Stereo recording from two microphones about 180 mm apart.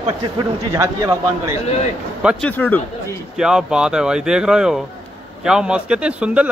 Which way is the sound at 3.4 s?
5° right (ahead or behind).